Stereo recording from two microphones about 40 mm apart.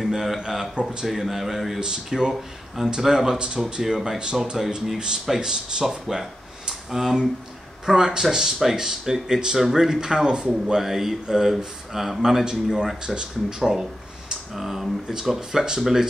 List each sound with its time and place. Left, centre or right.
0.1 s speech: centre
1.0 s speech: centre
3.3 s speech: right
3.8 s speech: centre
5.2 s speech: centre
12.7 s speech: centre